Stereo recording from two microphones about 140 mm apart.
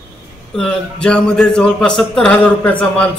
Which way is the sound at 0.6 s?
5° left (ahead or behind).